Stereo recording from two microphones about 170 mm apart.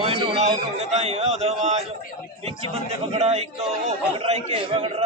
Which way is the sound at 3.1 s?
40° right (ahead or behind).